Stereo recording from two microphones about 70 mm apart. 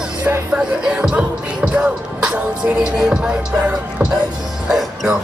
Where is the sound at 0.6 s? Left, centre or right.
Centre.